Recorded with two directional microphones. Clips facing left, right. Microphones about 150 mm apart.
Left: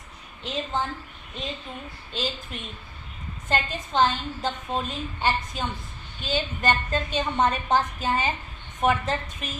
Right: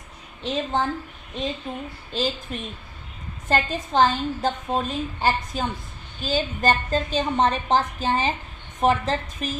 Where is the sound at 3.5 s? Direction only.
40° right (ahead or behind).